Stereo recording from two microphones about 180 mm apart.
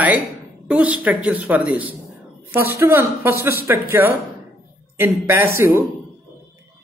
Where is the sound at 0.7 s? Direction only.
5° right (ahead or behind).